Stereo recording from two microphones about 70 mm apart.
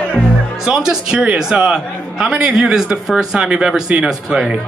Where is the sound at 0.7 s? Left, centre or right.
Centre.